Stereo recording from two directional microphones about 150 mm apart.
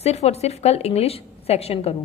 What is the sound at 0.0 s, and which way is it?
A woman's voice, 45° left (ahead or behind).